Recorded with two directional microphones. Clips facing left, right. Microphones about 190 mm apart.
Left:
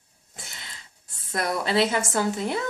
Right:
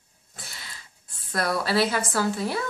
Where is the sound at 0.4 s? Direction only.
20° left (ahead or behind).